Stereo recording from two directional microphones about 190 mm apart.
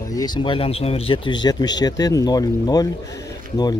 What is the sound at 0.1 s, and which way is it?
Speech, 20° left (ahead or behind).